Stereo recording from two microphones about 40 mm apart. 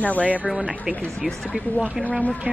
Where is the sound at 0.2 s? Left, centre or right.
Right.